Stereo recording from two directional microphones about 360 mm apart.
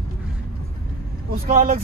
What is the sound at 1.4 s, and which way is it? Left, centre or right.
Speech, right.